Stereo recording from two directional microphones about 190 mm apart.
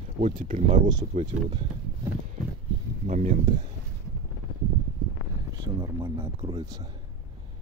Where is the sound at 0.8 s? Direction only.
20° right (ahead or behind).